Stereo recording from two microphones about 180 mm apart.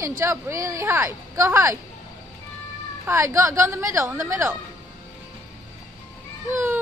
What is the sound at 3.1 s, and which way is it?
A woman's voice, 15° right (ahead or behind).